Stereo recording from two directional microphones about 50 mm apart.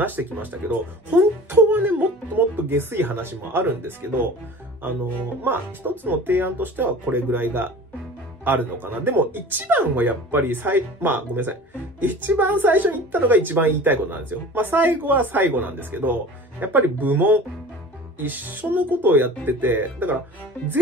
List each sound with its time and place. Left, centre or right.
0.0 s speech: right
5.4 s speech: right
20.5 s music: left